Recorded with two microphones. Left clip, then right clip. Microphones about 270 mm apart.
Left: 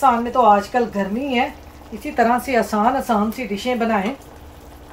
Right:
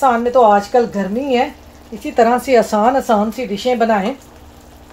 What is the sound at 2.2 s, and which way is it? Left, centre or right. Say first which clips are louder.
Speech: right 5 dB; right.